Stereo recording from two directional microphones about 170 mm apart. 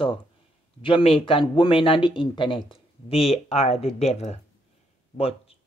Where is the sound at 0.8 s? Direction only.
30° left (ahead or behind).